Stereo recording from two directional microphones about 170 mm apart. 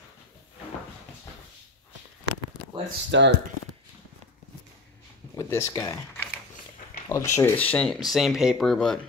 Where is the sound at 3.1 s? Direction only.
90° right.